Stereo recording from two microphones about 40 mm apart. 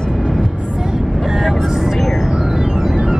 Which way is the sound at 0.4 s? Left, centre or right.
Centre.